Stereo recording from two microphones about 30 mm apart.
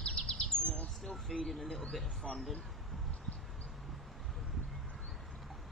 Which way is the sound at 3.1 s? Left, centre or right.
Left.